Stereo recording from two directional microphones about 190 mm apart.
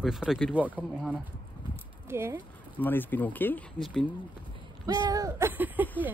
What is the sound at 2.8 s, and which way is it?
Speech, 10° left (ahead or behind).